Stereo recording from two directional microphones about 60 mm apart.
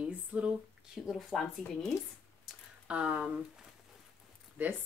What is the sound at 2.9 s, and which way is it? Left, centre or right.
Speech, centre.